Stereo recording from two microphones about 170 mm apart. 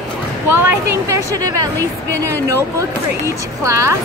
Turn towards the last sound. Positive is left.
turn(degrees=-15)  # may be behind; listen again after turning